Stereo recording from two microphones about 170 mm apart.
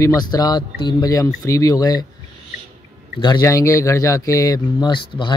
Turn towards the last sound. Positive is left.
turn(degrees=25)  # may be behind; listen again after turning